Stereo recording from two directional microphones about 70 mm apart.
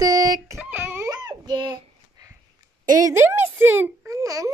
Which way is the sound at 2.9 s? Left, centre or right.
Right.